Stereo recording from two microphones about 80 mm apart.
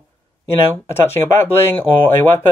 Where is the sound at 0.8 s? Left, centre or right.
Left.